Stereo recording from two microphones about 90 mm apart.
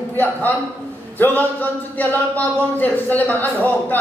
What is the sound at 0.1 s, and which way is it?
A man's voice, 20° left (ahead or behind).